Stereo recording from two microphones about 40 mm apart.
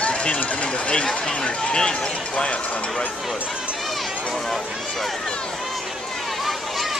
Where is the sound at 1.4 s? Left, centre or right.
Left.